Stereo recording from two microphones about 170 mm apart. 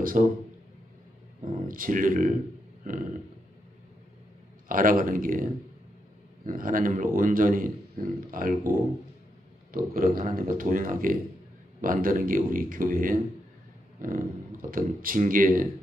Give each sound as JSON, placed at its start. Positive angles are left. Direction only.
{"t": 0.2, "sound": "speech", "side_deg": -50}
{"t": 1.7, "sound": "speech", "side_deg": -55}
{"t": 4.6, "sound": "speech", "side_deg": -55}